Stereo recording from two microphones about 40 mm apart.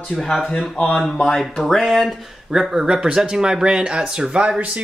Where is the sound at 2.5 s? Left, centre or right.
Centre; by 4.8 s right.